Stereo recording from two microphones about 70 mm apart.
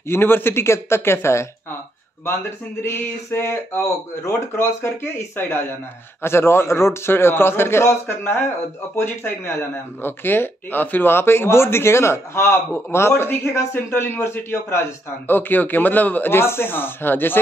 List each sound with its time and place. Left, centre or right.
0.1 s speech: left
2.8 s a man's voice: left